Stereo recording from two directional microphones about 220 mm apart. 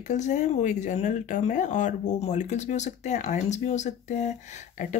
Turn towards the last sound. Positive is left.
turn(degrees=35)  # may be behind; listen again after turning